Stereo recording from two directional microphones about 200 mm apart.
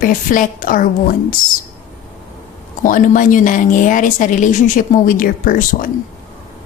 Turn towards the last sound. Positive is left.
turn(degrees=45)  # may be behind; listen again after turning